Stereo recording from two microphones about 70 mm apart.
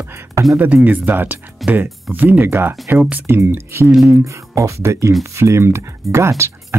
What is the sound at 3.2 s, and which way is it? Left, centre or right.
Speech, right.